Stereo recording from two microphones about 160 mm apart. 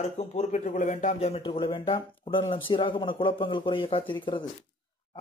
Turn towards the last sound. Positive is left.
turn(degrees=30)  # may be behind; listen again after turning